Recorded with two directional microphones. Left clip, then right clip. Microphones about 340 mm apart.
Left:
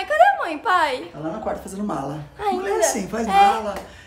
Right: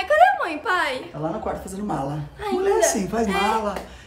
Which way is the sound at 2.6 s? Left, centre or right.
Centre.